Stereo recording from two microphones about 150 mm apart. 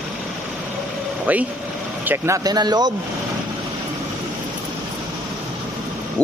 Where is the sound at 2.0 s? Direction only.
20° right (ahead or behind).